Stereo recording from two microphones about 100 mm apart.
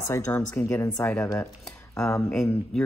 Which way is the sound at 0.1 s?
25° left (ahead or behind).